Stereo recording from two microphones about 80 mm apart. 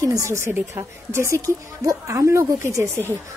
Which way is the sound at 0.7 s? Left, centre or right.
Right.